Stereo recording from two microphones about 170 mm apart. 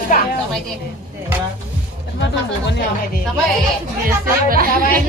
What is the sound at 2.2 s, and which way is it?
Speech, 90° left.